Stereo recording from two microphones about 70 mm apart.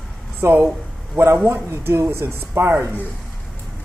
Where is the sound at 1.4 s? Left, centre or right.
Right.